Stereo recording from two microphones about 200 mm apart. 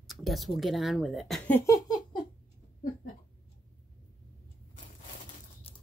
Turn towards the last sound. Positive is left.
turn(degrees=30)  # may be behind; listen again after turning